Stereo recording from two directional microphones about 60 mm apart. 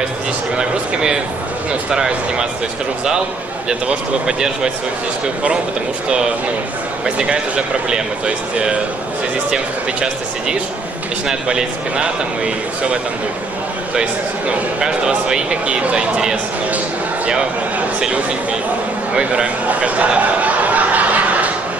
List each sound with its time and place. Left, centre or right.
0.6 s speech: centre
3.6 s speech: centre
7.2 s speech: centre
14.8 s speech: centre
18.0 s speech: centre
19.1 s a sound: centre